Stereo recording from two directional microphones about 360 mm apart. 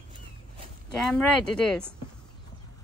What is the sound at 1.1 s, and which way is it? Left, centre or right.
Speech, centre.